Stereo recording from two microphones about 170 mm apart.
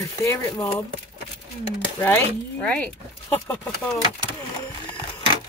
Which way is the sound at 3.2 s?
15° left (ahead or behind).